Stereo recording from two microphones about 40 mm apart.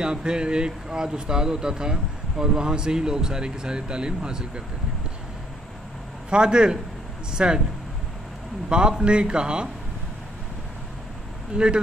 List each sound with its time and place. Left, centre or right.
0.0 s speech: right
6.3 s speech: right
8.6 s speech: right
11.5 s speech: right